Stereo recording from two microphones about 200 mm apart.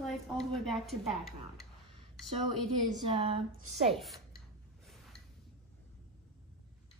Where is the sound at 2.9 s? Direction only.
30° right (ahead or behind).